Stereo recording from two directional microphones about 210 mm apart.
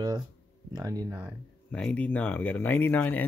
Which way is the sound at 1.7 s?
5° left (ahead or behind).